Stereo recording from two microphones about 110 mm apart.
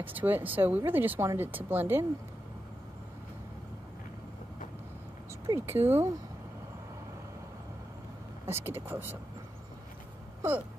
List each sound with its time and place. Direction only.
0.0 s speech: 15° right (ahead or behind)
5.7 s speech: 20° right (ahead or behind)
8.5 s speech: 20° right (ahead or behind)